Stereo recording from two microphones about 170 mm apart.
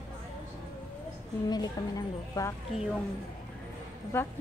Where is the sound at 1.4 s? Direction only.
25° left (ahead or behind).